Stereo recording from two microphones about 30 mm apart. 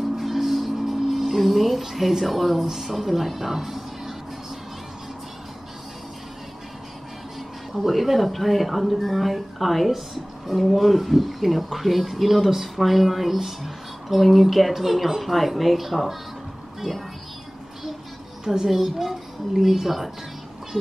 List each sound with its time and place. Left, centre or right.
0.2 s music: centre
2.6 s a woman's voice: centre
7.7 s speech: centre
18.4 s a child's voice: centre
18.9 s speech: centre